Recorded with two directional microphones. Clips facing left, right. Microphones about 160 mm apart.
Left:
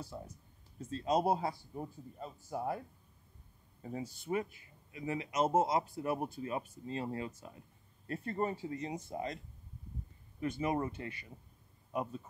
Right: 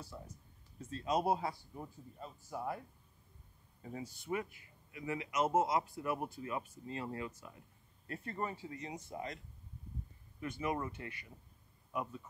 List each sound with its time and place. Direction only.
0.1 s a sound: 30° left (ahead or behind)
0.8 s speech: 30° left (ahead or behind)
3.8 s speech: 30° left (ahead or behind)
10.4 s speech: 30° left (ahead or behind)